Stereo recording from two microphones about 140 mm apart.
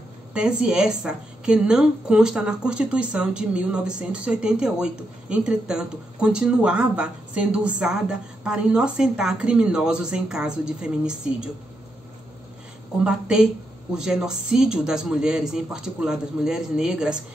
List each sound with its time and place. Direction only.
0.3 s a woman's voice: 5° right (ahead or behind)
13.0 s a woman's voice: 5° right (ahead or behind)